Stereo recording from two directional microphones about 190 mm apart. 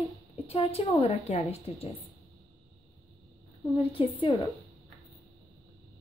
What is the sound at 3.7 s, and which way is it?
Speech, 30° left (ahead or behind).